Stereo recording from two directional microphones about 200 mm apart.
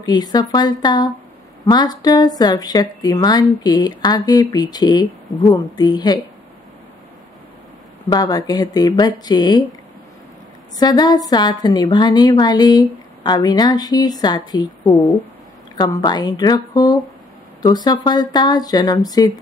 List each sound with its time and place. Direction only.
0.0 s a woman's voice: 20° left (ahead or behind)
8.1 s a woman's voice: 20° left (ahead or behind)
10.8 s a woman's voice: 20° left (ahead or behind)